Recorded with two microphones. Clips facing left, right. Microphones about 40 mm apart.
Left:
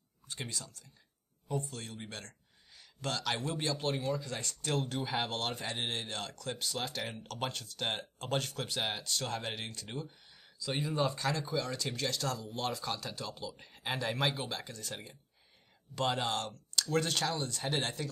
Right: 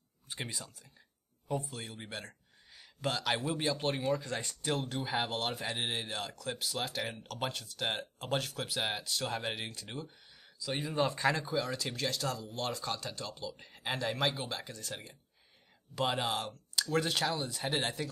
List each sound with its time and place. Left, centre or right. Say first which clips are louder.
0.3 s speech: right 1 dB; centre
11.1 s speech: right 3 dB; centre
11.4 s speech: right 1 dB; centre